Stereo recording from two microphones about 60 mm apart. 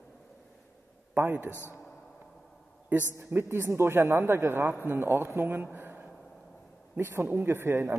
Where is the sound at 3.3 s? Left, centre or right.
Right.